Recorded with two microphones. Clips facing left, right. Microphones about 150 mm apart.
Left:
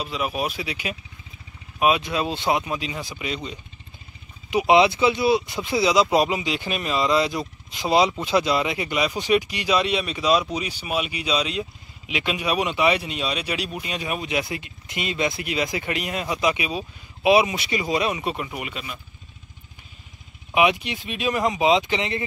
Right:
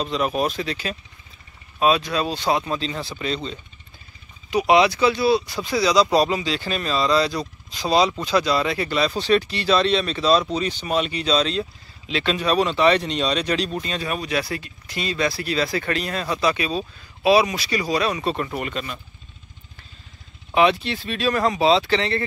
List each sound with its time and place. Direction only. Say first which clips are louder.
0.0 s speech: right 4 dB; 10° left (ahead or behind)
4.5 s speech: even; 20° left (ahead or behind)
20.5 s speech: right 2 dB; 15° left (ahead or behind)